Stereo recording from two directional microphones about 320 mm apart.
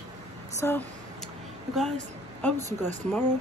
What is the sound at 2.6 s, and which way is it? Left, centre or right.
Speech, right.